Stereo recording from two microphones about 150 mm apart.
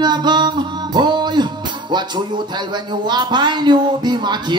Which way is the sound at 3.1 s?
30° right (ahead or behind).